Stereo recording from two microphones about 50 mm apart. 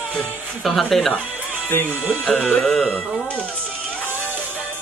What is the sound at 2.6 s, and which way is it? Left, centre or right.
Speech, centre.